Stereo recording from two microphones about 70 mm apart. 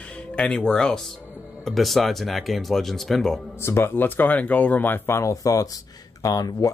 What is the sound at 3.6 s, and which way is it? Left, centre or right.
Speech, left.